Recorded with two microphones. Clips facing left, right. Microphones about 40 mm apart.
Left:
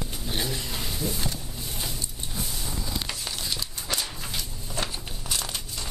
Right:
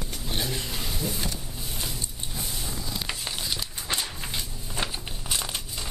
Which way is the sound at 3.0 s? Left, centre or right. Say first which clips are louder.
Right 1 dB; centre.